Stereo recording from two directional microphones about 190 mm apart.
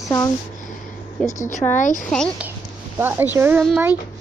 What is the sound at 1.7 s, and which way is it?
Speech, 40° left (ahead or behind).